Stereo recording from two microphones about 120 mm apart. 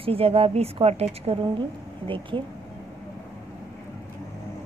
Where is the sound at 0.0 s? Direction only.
55° right (ahead or behind).